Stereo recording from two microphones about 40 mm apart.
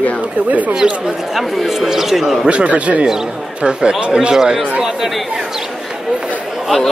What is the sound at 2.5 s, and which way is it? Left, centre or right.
Speech, right.